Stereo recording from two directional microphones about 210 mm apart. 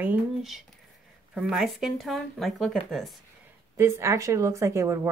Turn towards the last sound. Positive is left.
turn(degrees=-15)  # may be behind; listen again after turning